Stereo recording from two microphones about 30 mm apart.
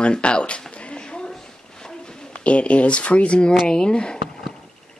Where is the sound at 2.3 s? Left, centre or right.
Left.